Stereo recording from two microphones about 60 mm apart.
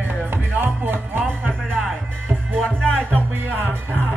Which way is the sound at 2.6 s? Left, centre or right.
Centre.